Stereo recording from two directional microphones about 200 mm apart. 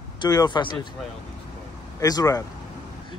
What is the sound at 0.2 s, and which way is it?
Speech, 20° left (ahead or behind).